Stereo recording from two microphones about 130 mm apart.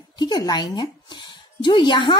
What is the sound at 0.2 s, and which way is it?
A woman's voice, 35° left (ahead or behind).